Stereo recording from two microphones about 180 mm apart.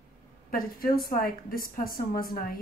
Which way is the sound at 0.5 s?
55° left (ahead or behind).